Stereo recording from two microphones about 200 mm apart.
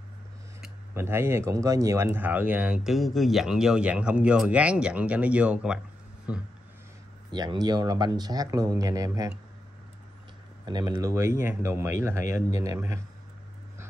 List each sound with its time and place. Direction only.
0.6 s speech: 10° right (ahead or behind)
7.2 s speech: 20° right (ahead or behind)
10.6 s speech: 20° right (ahead or behind)